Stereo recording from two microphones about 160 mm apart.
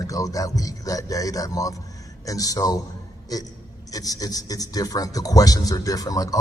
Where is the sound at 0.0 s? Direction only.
20° left (ahead or behind).